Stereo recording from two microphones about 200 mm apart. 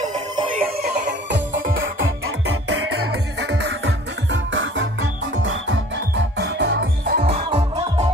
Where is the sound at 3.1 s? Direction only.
60° right (ahead or behind).